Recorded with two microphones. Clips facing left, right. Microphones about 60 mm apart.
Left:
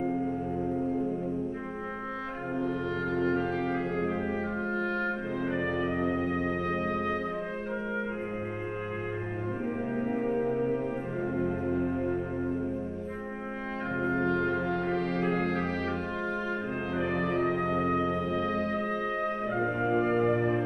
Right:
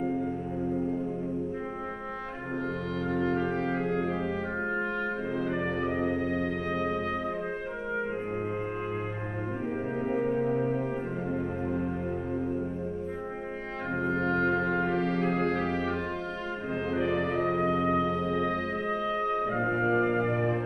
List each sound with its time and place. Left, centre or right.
3.6 s music: centre
4.1 s organ: left
5.5 s music: centre
10.2 s music: centre
14.7 s music: centre
17.5 s music: centre
19.5 s music: right
19.8 s music: centre